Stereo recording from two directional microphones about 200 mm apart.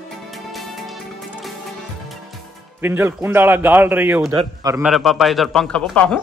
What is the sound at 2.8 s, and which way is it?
A man's voice, 10° right (ahead or behind).